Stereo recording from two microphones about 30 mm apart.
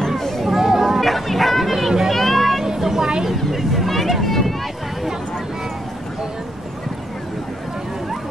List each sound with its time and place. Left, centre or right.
0.6 s chatter: centre
0.8 s a sound: centre
2.6 s vehicle: centre
3.3 s vehicle: centre